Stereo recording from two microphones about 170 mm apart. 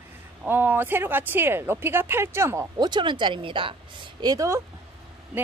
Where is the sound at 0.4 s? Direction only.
10° right (ahead or behind).